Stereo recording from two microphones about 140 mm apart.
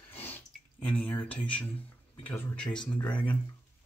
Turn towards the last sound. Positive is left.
turn(degrees=10)  # may be behind; listen again after turning